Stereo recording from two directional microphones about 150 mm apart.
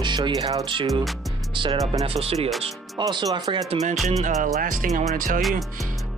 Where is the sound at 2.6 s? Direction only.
30° right (ahead or behind).